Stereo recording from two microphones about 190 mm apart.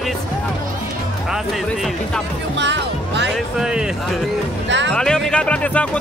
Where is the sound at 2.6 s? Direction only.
70° right (ahead or behind).